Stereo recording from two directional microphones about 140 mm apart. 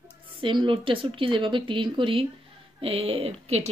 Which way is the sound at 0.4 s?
35° right (ahead or behind).